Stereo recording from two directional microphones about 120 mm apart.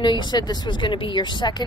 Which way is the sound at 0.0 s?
40° left (ahead or behind).